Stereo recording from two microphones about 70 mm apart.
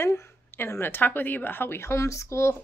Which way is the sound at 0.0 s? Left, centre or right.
Left.